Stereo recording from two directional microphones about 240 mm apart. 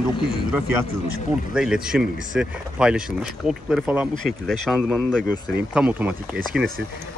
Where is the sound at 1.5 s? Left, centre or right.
Centre.